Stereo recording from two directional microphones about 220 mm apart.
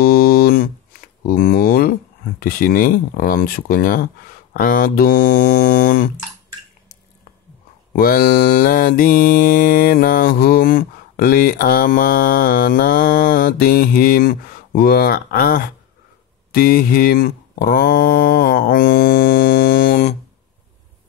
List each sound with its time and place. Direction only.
0.0 s a sound: 40° left (ahead or behind)
2.4 s mantra: 40° left (ahead or behind)
7.9 s mantra: 40° left (ahead or behind)